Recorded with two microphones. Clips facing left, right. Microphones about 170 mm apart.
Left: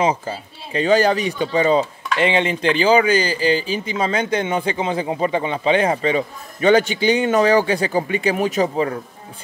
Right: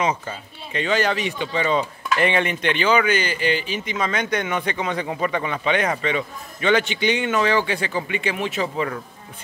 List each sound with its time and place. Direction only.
0.0 s speech: 30° left (ahead or behind)
2.1 s speech: 25° left (ahead or behind)